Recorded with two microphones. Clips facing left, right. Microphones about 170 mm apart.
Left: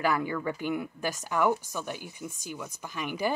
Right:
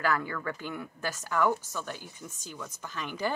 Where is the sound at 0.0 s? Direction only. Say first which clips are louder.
Left 2 dB; 15° left (ahead or behind).